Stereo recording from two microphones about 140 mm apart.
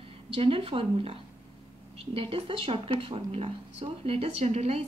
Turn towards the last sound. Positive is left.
turn(degrees=-50)  # may be behind; listen again after turning